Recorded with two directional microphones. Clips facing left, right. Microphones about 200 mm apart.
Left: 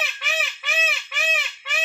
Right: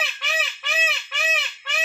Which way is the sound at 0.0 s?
Centre (ahead or behind).